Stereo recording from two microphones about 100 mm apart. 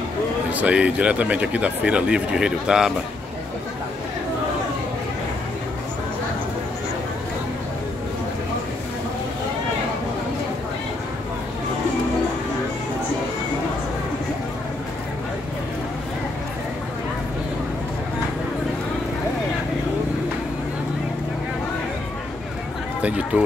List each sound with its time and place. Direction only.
0.5 s speech: 15° right (ahead or behind)
23.0 s run: 15° right (ahead or behind)